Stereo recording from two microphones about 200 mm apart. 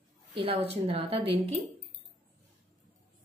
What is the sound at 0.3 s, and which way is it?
A woman's voice, 25° right (ahead or behind).